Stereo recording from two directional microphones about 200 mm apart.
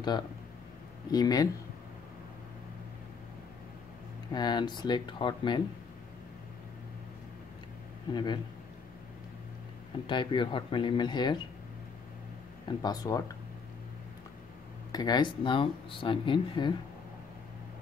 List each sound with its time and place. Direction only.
1.1 s speech: 20° left (ahead or behind)
4.3 s speech: 20° left (ahead or behind)
8.1 s speech: 20° left (ahead or behind)
10.0 s speech: 25° left (ahead or behind)
12.6 s speech: 20° left (ahead or behind)
14.9 s speech: 20° left (ahead or behind)